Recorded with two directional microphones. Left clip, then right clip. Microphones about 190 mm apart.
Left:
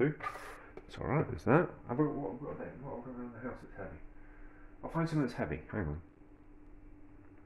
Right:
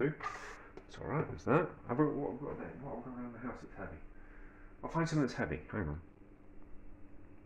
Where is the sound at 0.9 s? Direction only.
50° left (ahead or behind).